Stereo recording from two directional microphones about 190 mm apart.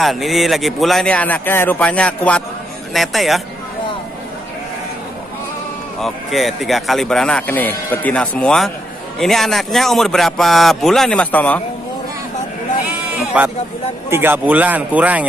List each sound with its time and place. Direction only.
0.0 s speech: centre (ahead or behind)
5.9 s speech: centre (ahead or behind)
14.1 s a man's voice: 10° right (ahead or behind)